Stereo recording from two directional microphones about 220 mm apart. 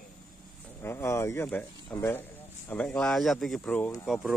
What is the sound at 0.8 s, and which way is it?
Speech, 10° left (ahead or behind).